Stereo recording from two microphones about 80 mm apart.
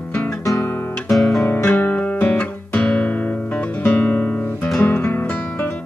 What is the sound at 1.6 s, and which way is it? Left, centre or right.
Guitar, left.